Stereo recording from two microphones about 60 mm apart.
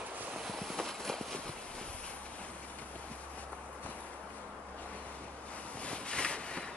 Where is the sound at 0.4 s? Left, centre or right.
Centre.